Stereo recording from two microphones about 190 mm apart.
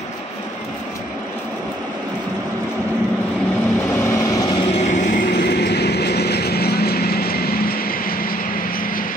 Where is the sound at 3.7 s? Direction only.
10° left (ahead or behind).